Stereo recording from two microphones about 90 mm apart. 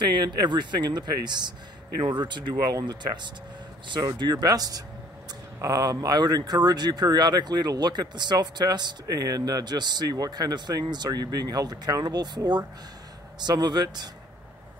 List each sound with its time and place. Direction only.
0.0 s speech: 55° right (ahead or behind)
13.4 s speech: 50° right (ahead or behind)